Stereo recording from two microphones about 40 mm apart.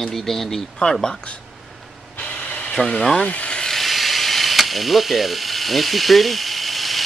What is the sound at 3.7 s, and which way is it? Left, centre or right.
Speech, centre.